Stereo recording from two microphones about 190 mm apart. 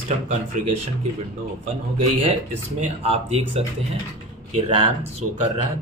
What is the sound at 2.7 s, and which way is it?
Speech, 30° right (ahead or behind).